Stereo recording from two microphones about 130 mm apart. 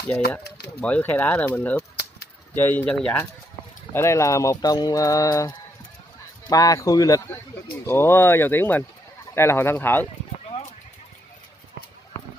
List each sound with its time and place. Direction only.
0.1 s speech: 10° left (ahead or behind)
3.9 s speech: 20° left (ahead or behind)
6.5 s speech: 25° left (ahead or behind)